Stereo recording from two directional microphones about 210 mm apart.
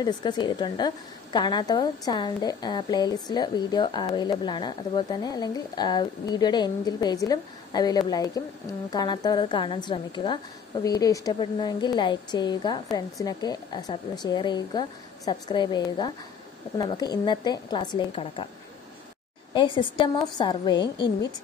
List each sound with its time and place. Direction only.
0.0 s a woman's voice: 20° left (ahead or behind)
19.5 s a woman's voice: 25° left (ahead or behind)